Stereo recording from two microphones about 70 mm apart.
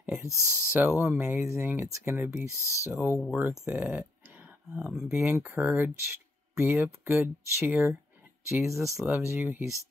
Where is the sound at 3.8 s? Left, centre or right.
Right.